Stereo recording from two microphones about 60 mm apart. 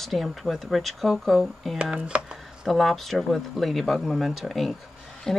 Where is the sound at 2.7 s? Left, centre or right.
Centre.